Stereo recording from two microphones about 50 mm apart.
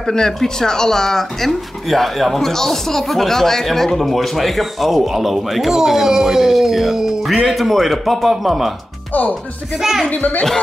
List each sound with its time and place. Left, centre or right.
0.0 s speech: centre
9.8 s speech: centre
10.0 s speech: left